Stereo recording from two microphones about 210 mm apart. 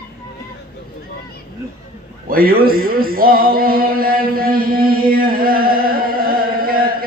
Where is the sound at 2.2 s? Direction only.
45° right (ahead or behind).